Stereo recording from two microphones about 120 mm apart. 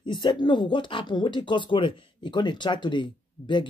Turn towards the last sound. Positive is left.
turn(degrees=40)  # may be behind; listen again after turning